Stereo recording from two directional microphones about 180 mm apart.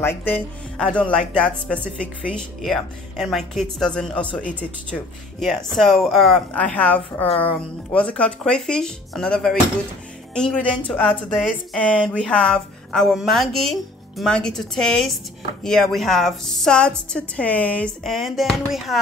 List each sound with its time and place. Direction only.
0.0 s speech: 10° left (ahead or behind)